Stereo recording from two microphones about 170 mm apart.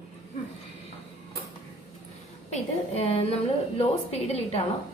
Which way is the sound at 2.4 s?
40° left (ahead or behind).